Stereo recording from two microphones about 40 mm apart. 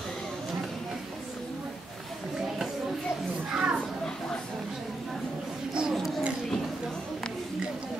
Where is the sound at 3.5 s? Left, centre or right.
Centre.